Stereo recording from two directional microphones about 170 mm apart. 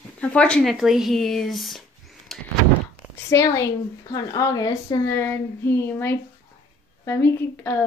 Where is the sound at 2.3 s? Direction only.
Centre (ahead or behind).